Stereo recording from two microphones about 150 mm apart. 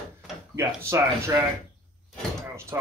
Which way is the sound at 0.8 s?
15° right (ahead or behind).